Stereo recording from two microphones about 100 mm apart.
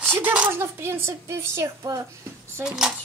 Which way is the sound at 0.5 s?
25° right (ahead or behind).